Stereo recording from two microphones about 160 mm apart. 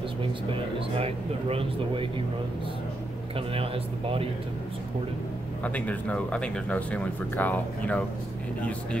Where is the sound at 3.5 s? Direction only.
35° right (ahead or behind).